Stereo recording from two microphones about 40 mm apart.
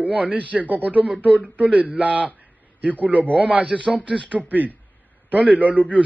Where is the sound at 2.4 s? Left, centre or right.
Right.